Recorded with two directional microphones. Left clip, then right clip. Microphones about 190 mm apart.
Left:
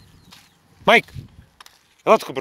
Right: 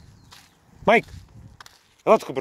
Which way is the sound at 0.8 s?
5° right (ahead or behind).